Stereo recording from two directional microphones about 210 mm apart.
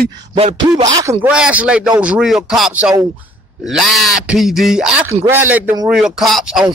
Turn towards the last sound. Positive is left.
turn(degrees=0)  # may be behind; listen again after turning